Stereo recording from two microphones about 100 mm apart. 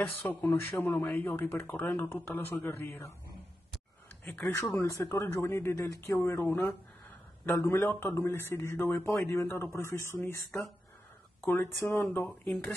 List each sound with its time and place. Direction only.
0.2 s speech: 20° left (ahead or behind)
4.3 s speech: 15° left (ahead or behind)
4.8 s speech: 30° left (ahead or behind)
7.5 s speech: 25° left (ahead or behind)
11.4 s speech: 20° left (ahead or behind)
12.3 s speech: 5° left (ahead or behind)